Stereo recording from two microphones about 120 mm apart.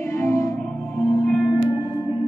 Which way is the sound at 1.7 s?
30° left (ahead or behind).